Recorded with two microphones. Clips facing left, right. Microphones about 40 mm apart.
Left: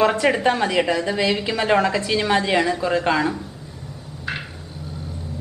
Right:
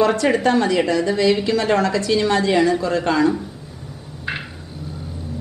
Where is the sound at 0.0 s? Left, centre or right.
Centre.